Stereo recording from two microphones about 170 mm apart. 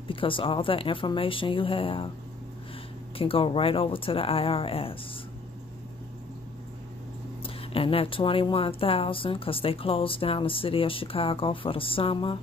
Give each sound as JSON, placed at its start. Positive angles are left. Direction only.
{"t": 0.1, "sound": "speech", "side_deg": 30}
{"t": 3.2, "sound": "speech", "side_deg": 35}
{"t": 7.4, "sound": "speech", "side_deg": 35}